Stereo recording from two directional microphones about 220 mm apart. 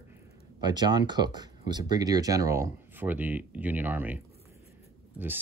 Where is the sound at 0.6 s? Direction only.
20° right (ahead or behind).